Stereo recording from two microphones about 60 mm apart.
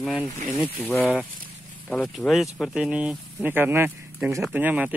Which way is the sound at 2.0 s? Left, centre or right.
Centre.